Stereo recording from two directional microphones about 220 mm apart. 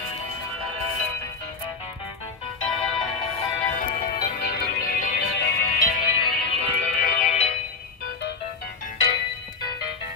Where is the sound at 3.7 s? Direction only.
45° left (ahead or behind).